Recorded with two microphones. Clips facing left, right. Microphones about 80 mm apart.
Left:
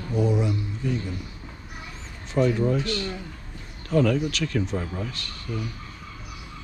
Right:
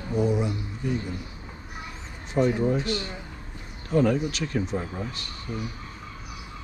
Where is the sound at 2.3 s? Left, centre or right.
Left.